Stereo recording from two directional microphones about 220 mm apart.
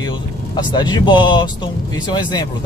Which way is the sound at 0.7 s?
20° left (ahead or behind).